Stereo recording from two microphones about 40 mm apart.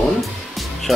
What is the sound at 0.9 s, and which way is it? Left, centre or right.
Speech, centre.